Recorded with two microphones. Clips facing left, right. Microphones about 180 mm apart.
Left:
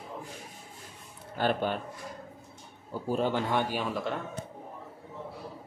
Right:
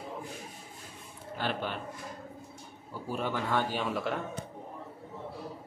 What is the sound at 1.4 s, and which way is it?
Speech, 45° left (ahead or behind).